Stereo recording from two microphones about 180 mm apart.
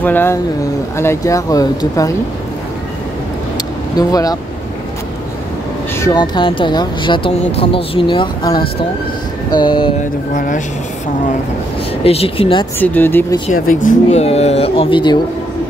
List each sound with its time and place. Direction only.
0.0 s speech: 10° left (ahead or behind)
3.9 s speech: 20° left (ahead or behind)
5.9 s speech: 20° left (ahead or behind)
10.3 s speech: 50° left (ahead or behind)
12.0 s speech: 30° left (ahead or behind)
12.7 s speech: 10° left (ahead or behind)
14.1 s speech: 35° left (ahead or behind)